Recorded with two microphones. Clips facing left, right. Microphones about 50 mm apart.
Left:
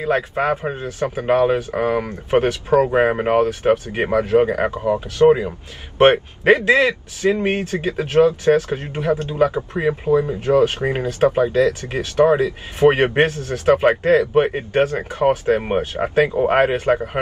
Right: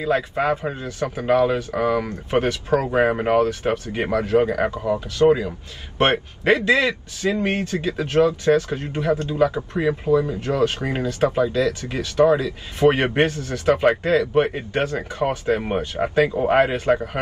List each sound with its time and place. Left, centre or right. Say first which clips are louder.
0.0 s a man's voice: left 2 dB; left; by 3.4 s centre
3.6 s a man's voice: left 5 dB; left
8.0 s a man's voice: left 4 dB; left